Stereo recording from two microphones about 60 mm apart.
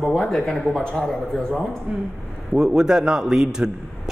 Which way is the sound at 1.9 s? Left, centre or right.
Centre.